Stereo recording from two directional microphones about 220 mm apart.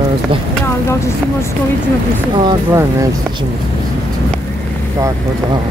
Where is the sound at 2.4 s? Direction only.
20° right (ahead or behind).